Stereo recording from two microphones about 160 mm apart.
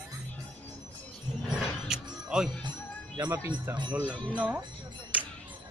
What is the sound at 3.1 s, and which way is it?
Speech, 25° right (ahead or behind).